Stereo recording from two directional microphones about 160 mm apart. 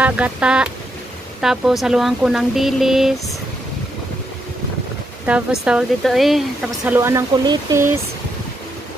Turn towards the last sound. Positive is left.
turn(degrees=-20)  # may be behind; listen again after turning